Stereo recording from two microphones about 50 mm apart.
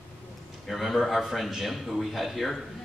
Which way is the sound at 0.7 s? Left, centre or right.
Centre.